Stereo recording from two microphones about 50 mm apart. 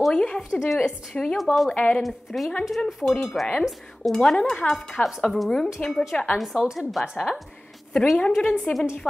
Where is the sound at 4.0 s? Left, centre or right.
Centre.